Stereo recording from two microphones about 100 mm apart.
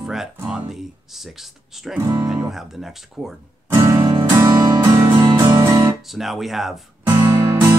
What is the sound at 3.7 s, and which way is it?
Music, 25° right (ahead or behind).